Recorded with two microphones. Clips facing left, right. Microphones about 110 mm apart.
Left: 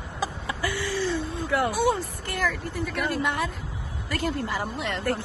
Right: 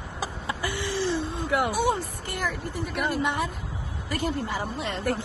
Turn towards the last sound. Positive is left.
turn(degrees=-20)  # may be behind; listen again after turning